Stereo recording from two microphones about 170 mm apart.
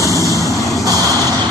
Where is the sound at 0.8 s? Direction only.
20° right (ahead or behind).